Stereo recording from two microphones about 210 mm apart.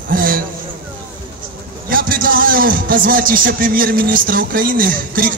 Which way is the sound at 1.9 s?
40° right (ahead or behind).